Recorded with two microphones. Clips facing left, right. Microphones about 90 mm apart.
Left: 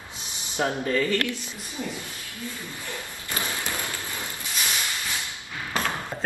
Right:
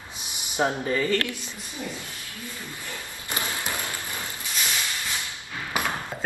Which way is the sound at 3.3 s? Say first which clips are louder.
Even; 20° right (ahead or behind).